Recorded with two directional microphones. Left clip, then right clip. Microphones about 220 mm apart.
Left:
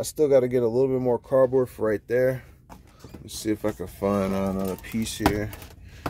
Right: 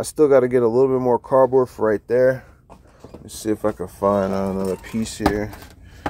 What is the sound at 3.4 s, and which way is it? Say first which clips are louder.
Speech: right 5 dB; centre (ahead or behind).